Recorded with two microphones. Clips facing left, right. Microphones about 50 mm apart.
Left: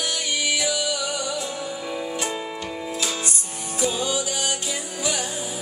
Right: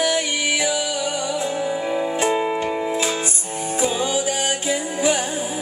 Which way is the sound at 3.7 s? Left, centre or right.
Right.